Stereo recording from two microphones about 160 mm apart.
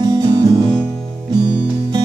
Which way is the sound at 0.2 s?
25° right (ahead or behind).